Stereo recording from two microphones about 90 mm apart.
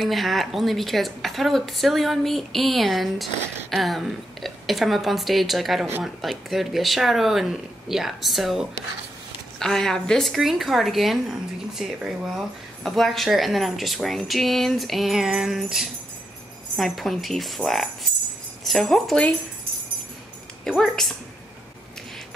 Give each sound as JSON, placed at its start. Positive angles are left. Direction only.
{"t": 0.0, "sound": "speech", "side_deg": 0}
{"t": 20.6, "sound": "speech", "side_deg": 5}